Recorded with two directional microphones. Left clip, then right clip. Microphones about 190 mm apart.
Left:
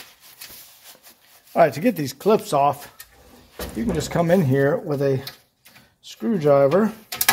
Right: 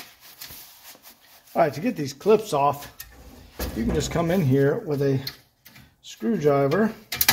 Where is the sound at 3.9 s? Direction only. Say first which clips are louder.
Left 5 dB; 45° left (ahead or behind).